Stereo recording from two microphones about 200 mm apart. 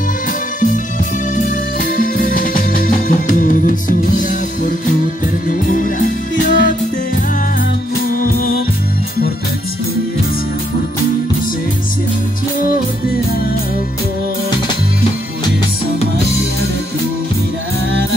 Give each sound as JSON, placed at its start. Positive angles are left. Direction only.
{"t": 1.3, "sound": "music", "side_deg": 45}